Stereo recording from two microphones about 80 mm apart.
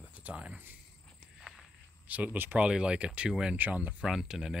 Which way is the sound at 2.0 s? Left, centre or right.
Centre.